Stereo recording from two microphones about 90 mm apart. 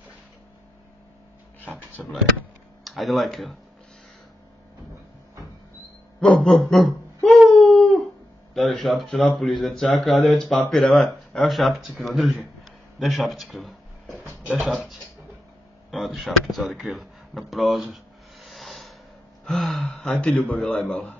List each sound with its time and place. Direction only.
1.6 s speech: 15° left (ahead or behind)
2.8 s speech: centre (ahead or behind)
6.2 s speech: 5° left (ahead or behind)
7.2 s a sound: centre (ahead or behind)
8.5 s speech: centre (ahead or behind)
15.9 s a sound: centre (ahead or behind)
19.4 s speech: centre (ahead or behind)